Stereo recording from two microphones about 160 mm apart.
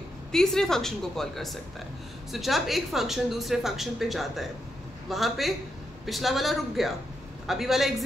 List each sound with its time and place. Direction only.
0.3 s a woman's voice: 5° left (ahead or behind)